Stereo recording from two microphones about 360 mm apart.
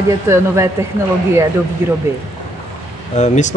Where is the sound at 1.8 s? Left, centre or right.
Centre.